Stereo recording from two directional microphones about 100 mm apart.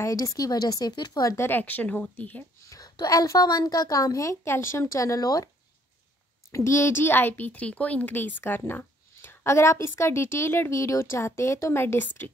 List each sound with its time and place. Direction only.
0.0 s a woman's voice: 35° left (ahead or behind)
1.3 s speech: 20° left (ahead or behind)
2.7 s a woman's voice: 40° left (ahead or behind)
6.5 s speech: 30° left (ahead or behind)